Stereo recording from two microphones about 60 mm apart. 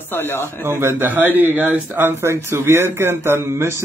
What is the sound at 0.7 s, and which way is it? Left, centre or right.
Speech, right.